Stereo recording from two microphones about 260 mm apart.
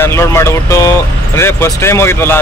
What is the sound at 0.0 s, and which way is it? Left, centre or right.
Speech, centre.